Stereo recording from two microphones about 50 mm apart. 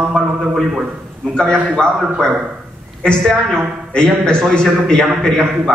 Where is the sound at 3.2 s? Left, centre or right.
Centre.